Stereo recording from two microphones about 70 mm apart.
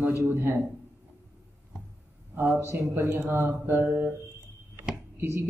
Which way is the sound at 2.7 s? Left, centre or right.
Right.